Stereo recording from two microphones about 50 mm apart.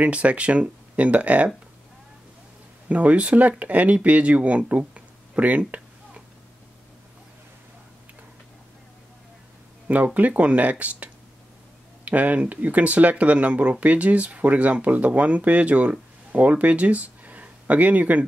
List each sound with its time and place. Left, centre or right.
0.0 s speech: right
2.9 s speech: right
9.8 s speech: right